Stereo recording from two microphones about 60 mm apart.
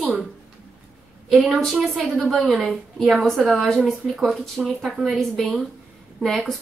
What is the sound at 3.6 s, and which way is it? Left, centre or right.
Speech, centre.